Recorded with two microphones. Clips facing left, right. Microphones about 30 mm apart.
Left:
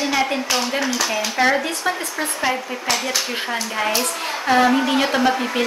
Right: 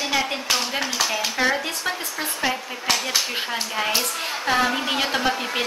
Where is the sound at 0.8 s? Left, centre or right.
Centre.